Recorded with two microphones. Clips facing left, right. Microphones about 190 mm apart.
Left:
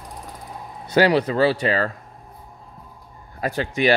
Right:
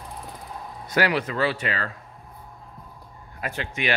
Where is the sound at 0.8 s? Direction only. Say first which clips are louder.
Left 6 dB; 30° left (ahead or behind).